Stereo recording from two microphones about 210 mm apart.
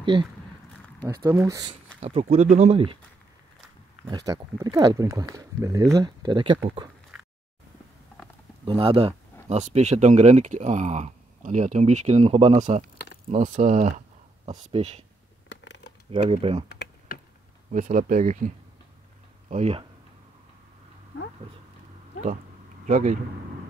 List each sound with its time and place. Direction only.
0.0 s speech: 20° right (ahead or behind)
2.0 s speech: 30° right (ahead or behind)
4.0 s speech: 15° right (ahead or behind)
8.6 s speech: 25° right (ahead or behind)
12.9 s a sound: 50° left (ahead or behind)
13.3 s speech: 35° right (ahead or behind)
15.4 s a sound: 55° left (ahead or behind)
16.1 s speech: 25° right (ahead or behind)
16.6 s typing: 50° left (ahead or behind)
17.6 s speech: 40° right (ahead or behind)
19.5 s speech: 30° right (ahead or behind)
22.8 s speech: 35° right (ahead or behind)